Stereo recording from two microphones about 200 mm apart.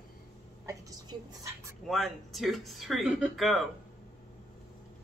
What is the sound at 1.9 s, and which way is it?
Speech, centre (ahead or behind).